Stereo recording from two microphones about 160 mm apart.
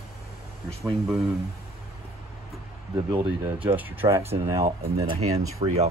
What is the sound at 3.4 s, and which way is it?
Speech, 10° right (ahead or behind).